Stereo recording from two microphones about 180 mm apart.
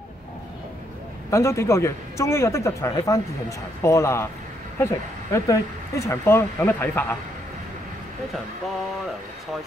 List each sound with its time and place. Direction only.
1.3 s a man's voice: 15° left (ahead or behind)